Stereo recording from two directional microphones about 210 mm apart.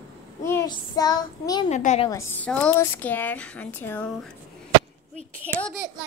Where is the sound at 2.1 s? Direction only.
10° left (ahead or behind).